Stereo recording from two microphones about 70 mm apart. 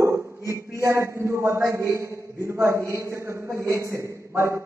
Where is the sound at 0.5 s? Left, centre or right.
Right.